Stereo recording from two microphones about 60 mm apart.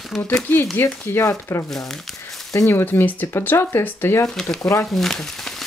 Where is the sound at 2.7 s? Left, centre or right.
Left.